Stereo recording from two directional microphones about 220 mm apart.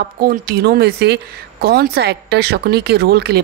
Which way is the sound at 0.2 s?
40° right (ahead or behind).